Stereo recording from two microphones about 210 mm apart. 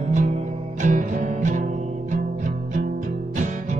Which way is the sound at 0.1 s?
35° right (ahead or behind).